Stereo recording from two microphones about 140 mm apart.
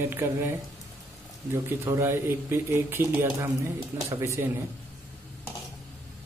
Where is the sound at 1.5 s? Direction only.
20° right (ahead or behind).